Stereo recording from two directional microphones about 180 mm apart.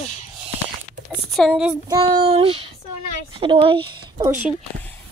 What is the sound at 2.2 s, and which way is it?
Child singing, 30° right (ahead or behind).